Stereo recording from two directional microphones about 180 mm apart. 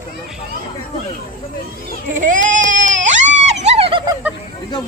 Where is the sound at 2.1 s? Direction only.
45° right (ahead or behind).